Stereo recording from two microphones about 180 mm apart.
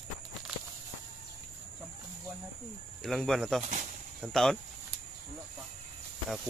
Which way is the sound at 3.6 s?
45° right (ahead or behind).